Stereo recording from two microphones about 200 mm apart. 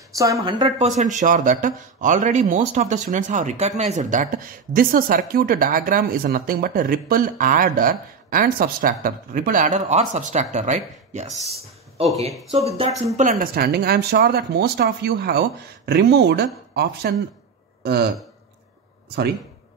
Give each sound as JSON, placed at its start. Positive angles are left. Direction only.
{"t": 0.1, "sound": "a woman's voice", "side_deg": -15}
{"t": 0.7, "sound": "speech", "side_deg": -35}
{"t": 12.5, "sound": "speech", "side_deg": -30}
{"t": 19.0, "sound": "speech", "side_deg": -55}